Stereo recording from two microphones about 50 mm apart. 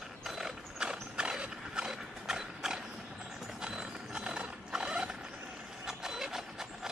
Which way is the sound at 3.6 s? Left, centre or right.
Centre.